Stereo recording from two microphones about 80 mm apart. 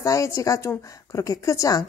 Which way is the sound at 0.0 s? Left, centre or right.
Left.